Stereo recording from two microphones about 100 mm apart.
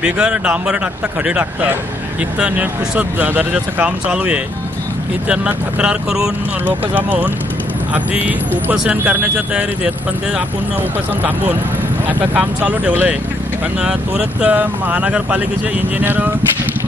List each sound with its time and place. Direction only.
0.0 s speech: 10° right (ahead or behind)
8.7 s speech: 15° right (ahead or behind)
12.1 s speech: 15° right (ahead or behind)